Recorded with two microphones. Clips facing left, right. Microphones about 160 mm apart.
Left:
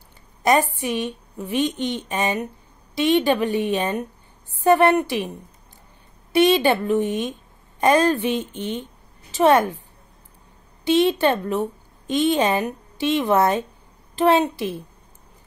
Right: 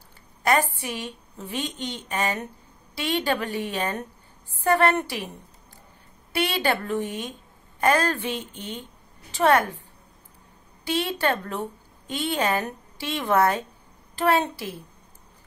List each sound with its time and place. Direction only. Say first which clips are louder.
0.4 s a woman's voice: left 4 dB; 15° left (ahead or behind)
6.3 s a woman's voice: left 8 dB; 15° left (ahead or behind)
10.9 s a woman's voice: left 7 dB; 20° left (ahead or behind)